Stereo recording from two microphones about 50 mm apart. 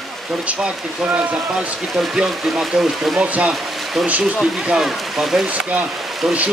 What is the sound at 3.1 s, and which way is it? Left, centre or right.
Speech, right.